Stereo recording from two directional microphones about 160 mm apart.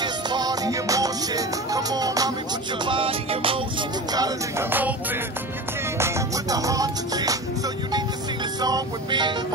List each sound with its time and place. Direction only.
0.0 s music: 25° right (ahead or behind)
2.8 s music: 30° right (ahead or behind)
4.1 s music: 25° right (ahead or behind)
4.6 s music: 10° right (ahead or behind)
5.9 s music: 15° right (ahead or behind)
8.5 s music: 25° right (ahead or behind)